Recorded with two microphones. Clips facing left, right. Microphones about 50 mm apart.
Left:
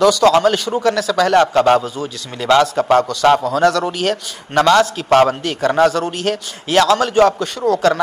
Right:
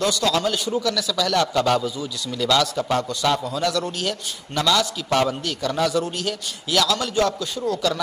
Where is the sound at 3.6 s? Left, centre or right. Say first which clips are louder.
Left 9 dB; left.